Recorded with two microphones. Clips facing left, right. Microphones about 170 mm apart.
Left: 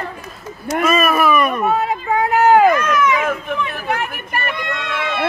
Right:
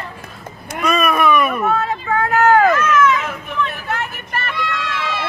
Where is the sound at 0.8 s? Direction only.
Centre (ahead or behind).